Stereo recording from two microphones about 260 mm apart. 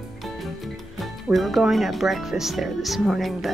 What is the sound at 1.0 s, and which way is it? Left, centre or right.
Speech, centre.